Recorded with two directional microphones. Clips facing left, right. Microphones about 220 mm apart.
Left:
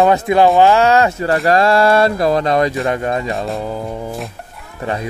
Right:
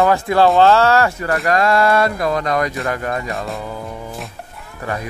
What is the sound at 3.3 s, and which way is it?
Speech, centre (ahead or behind).